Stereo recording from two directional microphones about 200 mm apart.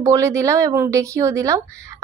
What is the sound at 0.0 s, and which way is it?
A woman's voice, 15° right (ahead or behind).